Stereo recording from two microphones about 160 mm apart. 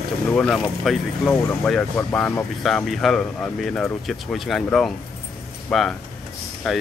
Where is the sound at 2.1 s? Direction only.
15° left (ahead or behind).